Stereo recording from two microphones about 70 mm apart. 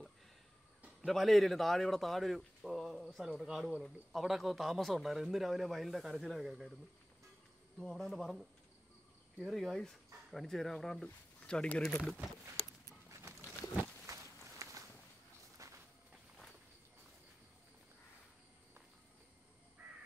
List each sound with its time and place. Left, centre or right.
1.0 s a man's voice: centre
7.8 s a man's voice: centre
9.5 s a man's voice: centre
14.0 s walk: right
19.8 s crow: centre